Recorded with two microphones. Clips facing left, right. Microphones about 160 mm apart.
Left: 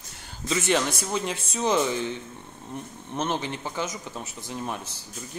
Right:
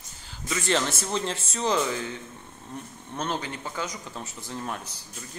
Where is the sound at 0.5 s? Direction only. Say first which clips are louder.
Left 2 dB; 20° left (ahead or behind).